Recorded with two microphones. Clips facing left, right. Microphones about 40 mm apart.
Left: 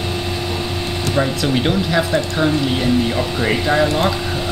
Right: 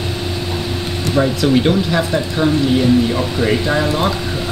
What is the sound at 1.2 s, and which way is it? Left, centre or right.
Speech, centre.